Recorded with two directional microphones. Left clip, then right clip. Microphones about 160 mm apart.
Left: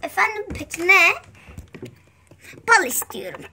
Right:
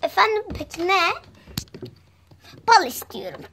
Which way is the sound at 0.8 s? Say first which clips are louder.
Left 5 dB; 30° right (ahead or behind).